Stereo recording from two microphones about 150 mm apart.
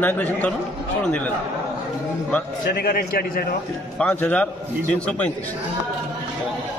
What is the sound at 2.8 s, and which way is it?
Speech, 90° left.